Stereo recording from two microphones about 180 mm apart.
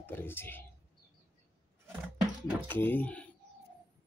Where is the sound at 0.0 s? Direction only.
10° left (ahead or behind).